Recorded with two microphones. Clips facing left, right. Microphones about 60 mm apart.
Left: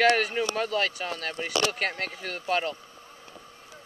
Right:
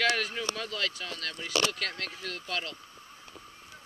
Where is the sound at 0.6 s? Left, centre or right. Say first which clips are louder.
Left 7 dB; centre.